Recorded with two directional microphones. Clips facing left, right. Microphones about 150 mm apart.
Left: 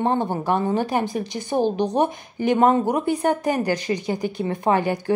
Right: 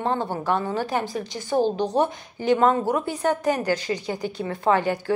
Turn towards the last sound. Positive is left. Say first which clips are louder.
# left 1 dB
turn(degrees=15)  # may be behind; listen again after turning